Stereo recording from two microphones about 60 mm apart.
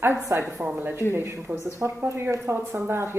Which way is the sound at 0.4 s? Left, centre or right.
Right.